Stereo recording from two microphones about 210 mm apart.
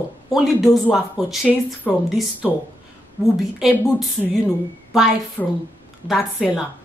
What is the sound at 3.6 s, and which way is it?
Speech, centre (ahead or behind).